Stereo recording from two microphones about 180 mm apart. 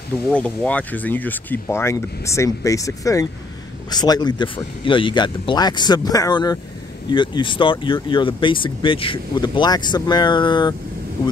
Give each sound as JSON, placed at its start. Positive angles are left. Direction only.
{"t": 0.3, "sound": "speech", "side_deg": 5}